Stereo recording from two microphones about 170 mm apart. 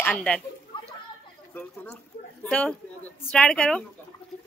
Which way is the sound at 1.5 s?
10° left (ahead or behind).